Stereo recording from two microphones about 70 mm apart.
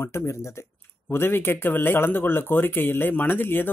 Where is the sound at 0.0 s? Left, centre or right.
Left.